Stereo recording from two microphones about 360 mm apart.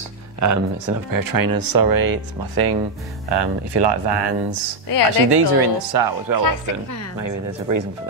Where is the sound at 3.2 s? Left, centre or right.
Right.